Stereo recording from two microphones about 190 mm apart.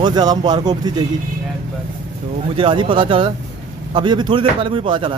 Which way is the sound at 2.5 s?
25° right (ahead or behind).